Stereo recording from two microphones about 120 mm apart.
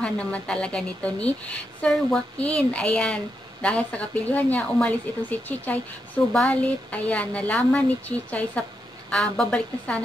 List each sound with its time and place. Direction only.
0.0 s a woman's voice: 10° left (ahead or behind)